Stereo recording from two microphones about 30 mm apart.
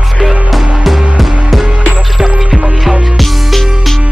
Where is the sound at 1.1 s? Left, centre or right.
Centre.